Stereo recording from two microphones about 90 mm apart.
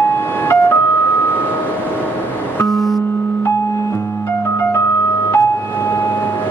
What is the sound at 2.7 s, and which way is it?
Music, centre (ahead or behind).